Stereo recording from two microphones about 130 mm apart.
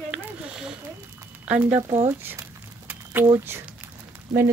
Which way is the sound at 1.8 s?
55° right (ahead or behind).